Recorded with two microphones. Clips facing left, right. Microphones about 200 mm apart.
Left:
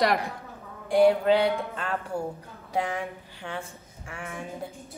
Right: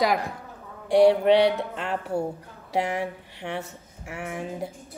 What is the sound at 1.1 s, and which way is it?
A woman's voice, 30° right (ahead or behind).